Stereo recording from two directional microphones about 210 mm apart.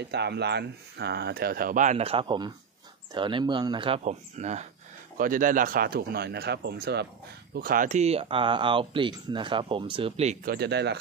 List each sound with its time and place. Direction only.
0.0 s speech: 50° right (ahead or behind); by 10.3 s 30° right (ahead or behind)
10.4 s speech: 50° right (ahead or behind)